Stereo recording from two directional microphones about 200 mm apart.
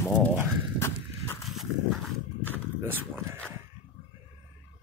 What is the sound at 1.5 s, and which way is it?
Horse, centre (ahead or behind).